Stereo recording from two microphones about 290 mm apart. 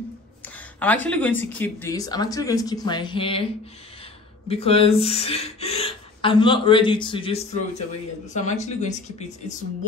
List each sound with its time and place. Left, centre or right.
0.7 s speech: centre
4.5 s a woman's voice: centre